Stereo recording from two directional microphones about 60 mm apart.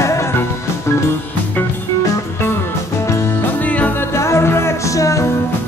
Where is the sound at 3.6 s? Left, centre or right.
Left.